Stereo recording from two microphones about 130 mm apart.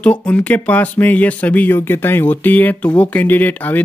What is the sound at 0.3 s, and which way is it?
Speech, 10° left (ahead or behind).